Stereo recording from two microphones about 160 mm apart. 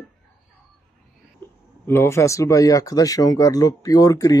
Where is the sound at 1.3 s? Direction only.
15° left (ahead or behind).